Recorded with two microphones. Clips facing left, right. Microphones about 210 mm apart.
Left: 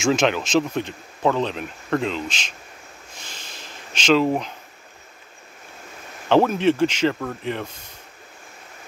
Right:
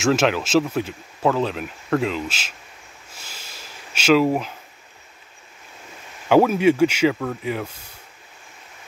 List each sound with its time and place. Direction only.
0.0 s speech: 5° right (ahead or behind)
3.2 s a sound: 5° right (ahead or behind)
6.2 s speech: 10° right (ahead or behind)